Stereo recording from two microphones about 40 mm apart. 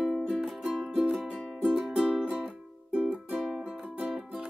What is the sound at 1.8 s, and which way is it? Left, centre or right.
Music, centre.